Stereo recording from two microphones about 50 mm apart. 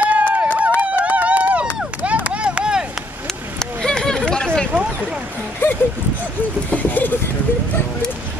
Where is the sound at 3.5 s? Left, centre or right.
Centre.